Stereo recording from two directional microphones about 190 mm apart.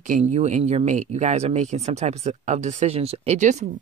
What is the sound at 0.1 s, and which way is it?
Speech, 35° right (ahead or behind).